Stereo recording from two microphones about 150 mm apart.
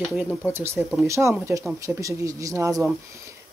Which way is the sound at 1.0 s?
20° right (ahead or behind).